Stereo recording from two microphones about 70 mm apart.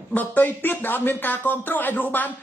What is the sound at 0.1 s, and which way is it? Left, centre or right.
Speech, left.